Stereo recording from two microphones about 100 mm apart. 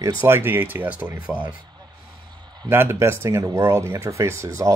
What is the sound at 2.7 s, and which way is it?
Speech, 25° right (ahead or behind).